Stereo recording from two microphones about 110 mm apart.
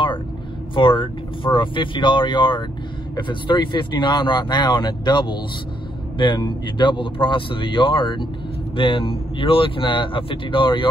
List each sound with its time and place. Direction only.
0.7 s speech: 50° left (ahead or behind)